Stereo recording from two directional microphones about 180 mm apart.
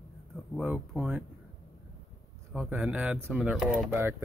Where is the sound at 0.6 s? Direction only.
5° right (ahead or behind).